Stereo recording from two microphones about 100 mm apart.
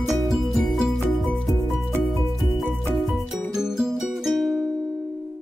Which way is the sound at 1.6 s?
30° right (ahead or behind).